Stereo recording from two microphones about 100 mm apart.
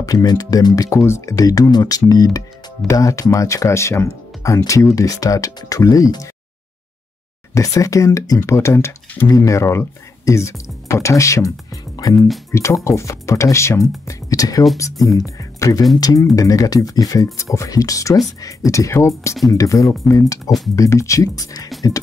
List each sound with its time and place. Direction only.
0.0 s speech: 40° left (ahead or behind)
7.5 s speech: 35° left (ahead or behind)